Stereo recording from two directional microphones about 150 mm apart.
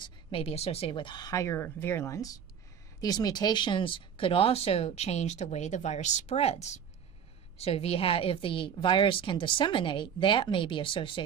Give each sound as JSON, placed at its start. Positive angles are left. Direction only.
{"t": 0.0, "sound": "a woman's voice", "side_deg": 40}